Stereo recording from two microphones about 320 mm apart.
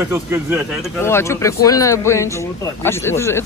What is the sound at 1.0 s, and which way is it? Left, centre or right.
Speech, centre.